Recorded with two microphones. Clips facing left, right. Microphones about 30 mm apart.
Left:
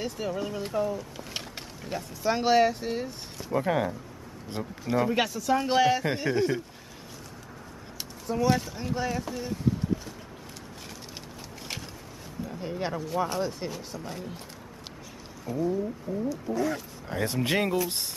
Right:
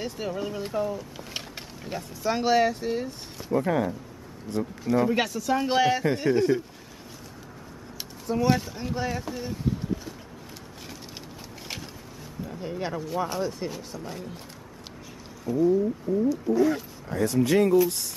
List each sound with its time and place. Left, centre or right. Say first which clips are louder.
0.0 s speech: even; centre
3.5 s speech: right 2 dB; centre
4.6 s speech: right 6 dB; left
4.9 s speech: right 2 dB; centre
8.3 s speech: right 1 dB; centre
11.6 s a sound: even; centre
12.5 s speech: right 1 dB; centre
15.4 s speech: right 6 dB; centre
16.1 s speech: right 9 dB; centre
16.5 s speech: right 6 dB; centre
17.1 s speech: right 5 dB; left